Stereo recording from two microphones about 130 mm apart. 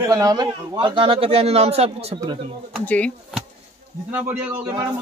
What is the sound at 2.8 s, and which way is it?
Speech, 10° left (ahead or behind).